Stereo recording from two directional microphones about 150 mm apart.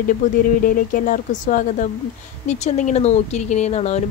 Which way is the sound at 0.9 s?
60° left (ahead or behind).